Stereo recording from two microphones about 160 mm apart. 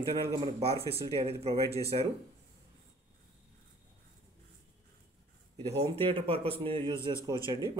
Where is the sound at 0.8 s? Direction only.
40° right (ahead or behind).